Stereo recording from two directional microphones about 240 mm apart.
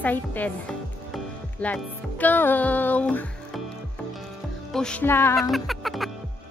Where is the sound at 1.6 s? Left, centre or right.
Centre.